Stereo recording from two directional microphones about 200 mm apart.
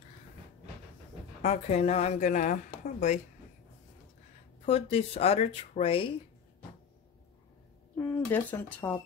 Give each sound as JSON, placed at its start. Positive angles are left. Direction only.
{"t": 1.4, "sound": "a woman's voice", "side_deg": 35}
{"t": 4.6, "sound": "speech", "side_deg": 30}
{"t": 7.9, "sound": "speech", "side_deg": 10}